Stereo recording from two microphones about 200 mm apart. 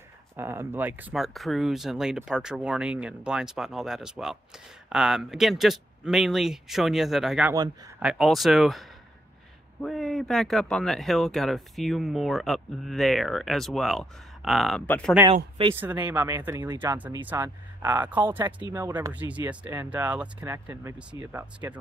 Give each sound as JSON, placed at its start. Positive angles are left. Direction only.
{"t": 0.4, "sound": "speech", "side_deg": -10}
{"t": 15.3, "sound": "speech", "side_deg": -30}
{"t": 15.7, "sound": "speech", "side_deg": -10}